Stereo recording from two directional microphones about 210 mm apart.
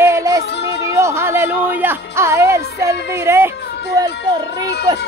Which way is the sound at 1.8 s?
10° right (ahead or behind).